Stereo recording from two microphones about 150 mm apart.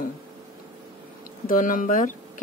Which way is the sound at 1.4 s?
65° left (ahead or behind).